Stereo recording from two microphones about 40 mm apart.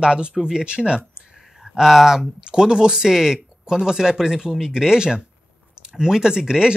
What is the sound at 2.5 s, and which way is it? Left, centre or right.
Speech, centre.